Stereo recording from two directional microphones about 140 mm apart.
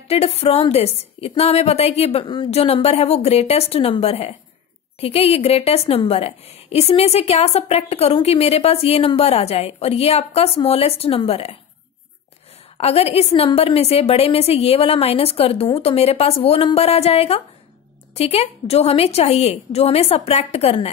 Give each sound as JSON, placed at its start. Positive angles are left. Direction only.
{"t": 0.1, "sound": "a woman's voice", "side_deg": 45}
{"t": 2.2, "sound": "a woman's voice", "side_deg": 35}
{"t": 12.7, "sound": "a woman's voice", "side_deg": 45}